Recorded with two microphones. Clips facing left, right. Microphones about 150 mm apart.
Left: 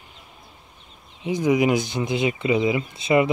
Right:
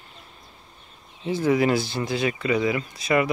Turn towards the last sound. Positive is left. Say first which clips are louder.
# left 3 dB
turn(degrees=25)  # may be behind; listen again after turning